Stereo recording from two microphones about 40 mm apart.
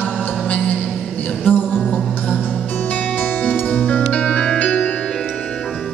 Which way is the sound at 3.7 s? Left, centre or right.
Left.